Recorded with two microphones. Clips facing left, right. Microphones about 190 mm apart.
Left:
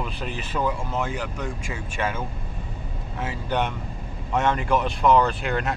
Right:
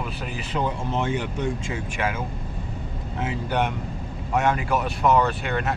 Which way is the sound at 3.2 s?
15° right (ahead or behind).